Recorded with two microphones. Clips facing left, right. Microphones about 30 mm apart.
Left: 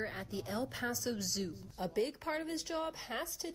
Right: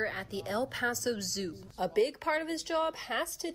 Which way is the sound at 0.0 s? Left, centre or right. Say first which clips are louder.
Right 6 dB; right.